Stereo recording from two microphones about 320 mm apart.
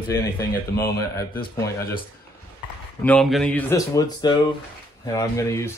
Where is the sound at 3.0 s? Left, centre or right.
Centre.